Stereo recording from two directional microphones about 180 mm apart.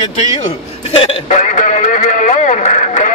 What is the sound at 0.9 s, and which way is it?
Speech, 30° left (ahead or behind).